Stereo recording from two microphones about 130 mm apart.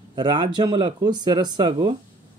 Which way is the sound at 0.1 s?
35° right (ahead or behind).